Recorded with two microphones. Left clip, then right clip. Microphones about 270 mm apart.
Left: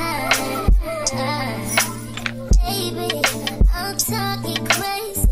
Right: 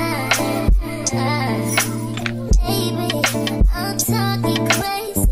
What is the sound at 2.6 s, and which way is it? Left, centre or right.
Music, left.